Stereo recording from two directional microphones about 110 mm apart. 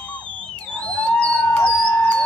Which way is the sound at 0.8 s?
10° left (ahead or behind).